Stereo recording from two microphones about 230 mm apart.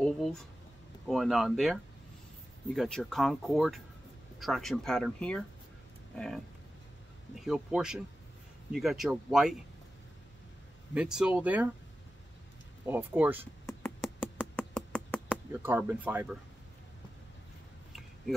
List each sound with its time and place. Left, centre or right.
0.0 s speech: centre
7.4 s speech: centre
11.0 s speech: centre
12.8 s speech: centre
14.5 s a sound: centre
15.5 s speech: centre